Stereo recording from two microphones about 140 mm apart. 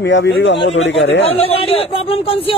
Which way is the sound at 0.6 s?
45° left (ahead or behind).